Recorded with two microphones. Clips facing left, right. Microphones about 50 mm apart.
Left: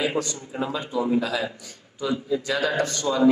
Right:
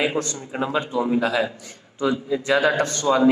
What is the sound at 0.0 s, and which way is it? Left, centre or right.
A man's voice, right.